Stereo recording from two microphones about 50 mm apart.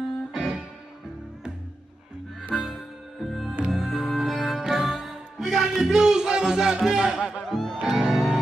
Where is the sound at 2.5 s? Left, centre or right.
Centre.